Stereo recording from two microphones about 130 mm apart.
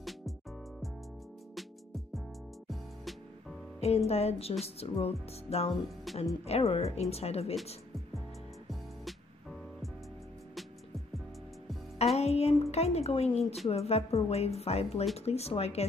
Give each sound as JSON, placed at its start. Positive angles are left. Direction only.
{"t": 3.8, "sound": "a woman's voice", "side_deg": 55}
{"t": 6.1, "sound": "music", "side_deg": 0}
{"t": 6.4, "sound": "a woman's voice", "side_deg": 50}
{"t": 12.2, "sound": "music", "side_deg": 55}
{"t": 12.7, "sound": "a woman's voice", "side_deg": 55}